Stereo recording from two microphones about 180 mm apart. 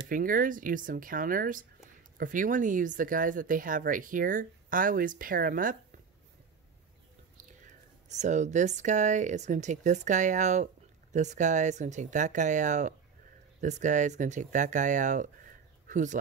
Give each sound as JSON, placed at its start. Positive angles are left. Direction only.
{"t": 0.1, "sound": "speech", "side_deg": -50}
{"t": 7.6, "sound": "speech", "side_deg": -40}